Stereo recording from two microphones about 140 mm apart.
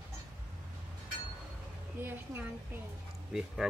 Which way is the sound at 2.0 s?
15° right (ahead or behind).